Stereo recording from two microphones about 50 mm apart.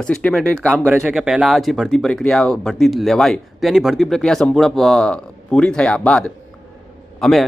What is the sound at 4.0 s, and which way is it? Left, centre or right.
Speech, centre.